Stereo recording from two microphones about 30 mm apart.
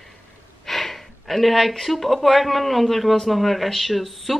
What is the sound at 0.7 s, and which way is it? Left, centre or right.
Speech, centre.